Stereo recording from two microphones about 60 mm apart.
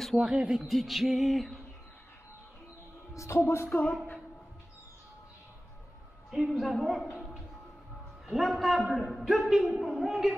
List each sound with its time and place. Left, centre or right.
0.0 s speech: centre
0.7 s music: centre
3.2 s speech: left
3.6 s speech: left
6.5 s music: centre
8.3 s music: centre